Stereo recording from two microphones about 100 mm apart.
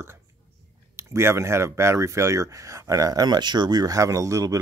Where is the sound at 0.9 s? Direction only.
25° right (ahead or behind).